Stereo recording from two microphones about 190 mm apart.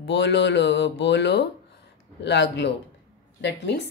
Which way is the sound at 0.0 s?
65° left (ahead or behind).